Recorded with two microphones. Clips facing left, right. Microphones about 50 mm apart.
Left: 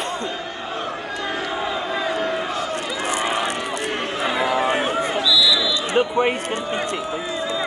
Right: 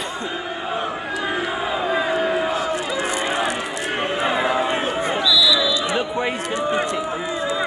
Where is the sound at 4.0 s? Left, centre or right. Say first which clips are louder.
Right 3 dB; centre.